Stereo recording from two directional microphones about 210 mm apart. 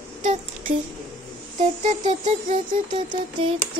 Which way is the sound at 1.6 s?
35° right (ahead or behind).